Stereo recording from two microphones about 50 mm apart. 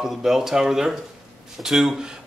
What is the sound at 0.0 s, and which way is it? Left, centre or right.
A man's voice, centre.